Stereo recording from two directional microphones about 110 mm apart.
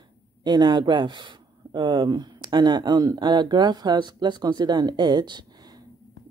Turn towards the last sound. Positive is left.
turn(degrees=-35)  # may be behind; listen again after turning